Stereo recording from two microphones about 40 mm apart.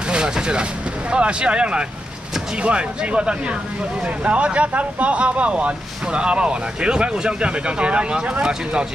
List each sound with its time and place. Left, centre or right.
0.1 s vehicle: centre
1.1 s speech: right